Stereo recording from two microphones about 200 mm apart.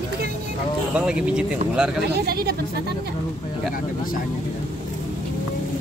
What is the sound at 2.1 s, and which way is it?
Speech, 50° right (ahead or behind).